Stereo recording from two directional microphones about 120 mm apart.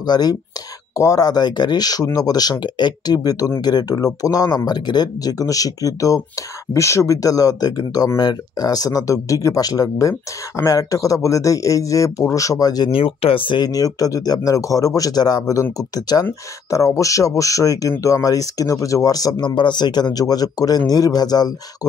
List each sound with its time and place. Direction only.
0.0 s speech: 35° left (ahead or behind)
12.9 s speech: 50° left (ahead or behind); by 21.5 s 35° left (ahead or behind)